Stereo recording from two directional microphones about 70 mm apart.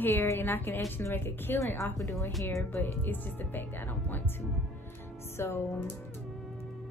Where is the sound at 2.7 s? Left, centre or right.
Left.